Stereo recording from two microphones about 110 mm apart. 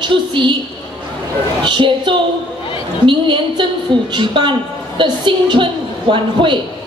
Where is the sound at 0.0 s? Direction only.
50° right (ahead or behind).